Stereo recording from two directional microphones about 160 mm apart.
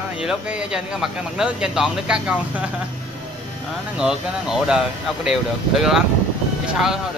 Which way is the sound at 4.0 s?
5° right (ahead or behind).